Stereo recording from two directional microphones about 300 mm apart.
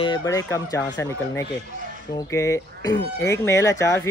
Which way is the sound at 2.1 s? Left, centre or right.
Centre.